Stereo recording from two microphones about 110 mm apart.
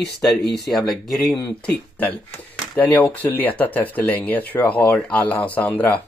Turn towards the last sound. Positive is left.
turn(degrees=15)  # may be behind; listen again after turning